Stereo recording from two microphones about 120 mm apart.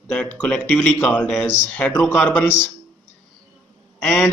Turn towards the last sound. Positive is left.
turn(degrees=20)  # may be behind; listen again after turning